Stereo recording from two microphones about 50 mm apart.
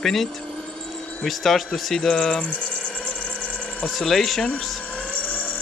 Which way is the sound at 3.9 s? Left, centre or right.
Centre.